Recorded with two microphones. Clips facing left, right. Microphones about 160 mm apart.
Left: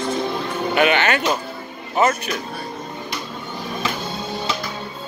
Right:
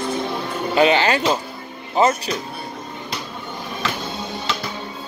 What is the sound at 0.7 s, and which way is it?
Speech, 30° right (ahead or behind).